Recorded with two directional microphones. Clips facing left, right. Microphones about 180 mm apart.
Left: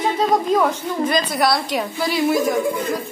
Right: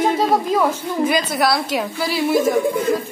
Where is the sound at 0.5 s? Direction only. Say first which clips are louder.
Even; 5° right (ahead or behind).